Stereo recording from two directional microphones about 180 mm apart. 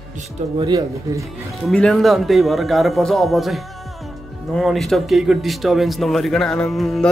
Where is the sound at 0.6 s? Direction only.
20° right (ahead or behind).